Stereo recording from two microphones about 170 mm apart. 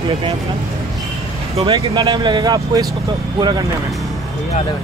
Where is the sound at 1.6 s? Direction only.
25° right (ahead or behind).